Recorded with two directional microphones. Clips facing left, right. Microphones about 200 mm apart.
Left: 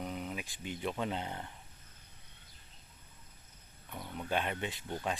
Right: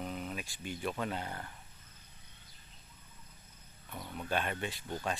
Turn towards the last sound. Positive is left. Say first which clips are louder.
# even
turn(degrees=20)  # may be behind; listen again after turning